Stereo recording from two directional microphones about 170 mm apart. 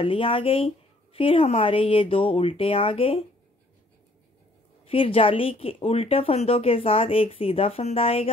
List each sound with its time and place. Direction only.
0.0 s speech: 30° left (ahead or behind)
4.8 s speech: 35° left (ahead or behind)